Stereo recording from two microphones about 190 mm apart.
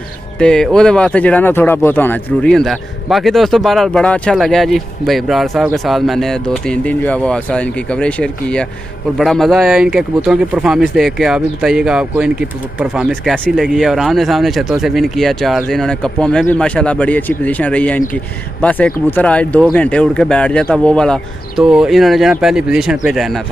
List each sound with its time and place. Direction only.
0.4 s speech: 5° left (ahead or behind)